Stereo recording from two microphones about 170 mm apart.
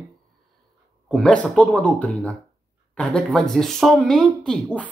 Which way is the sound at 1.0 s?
5° left (ahead or behind).